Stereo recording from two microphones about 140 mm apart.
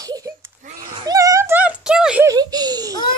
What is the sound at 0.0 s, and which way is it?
Laughter, 25° right (ahead or behind).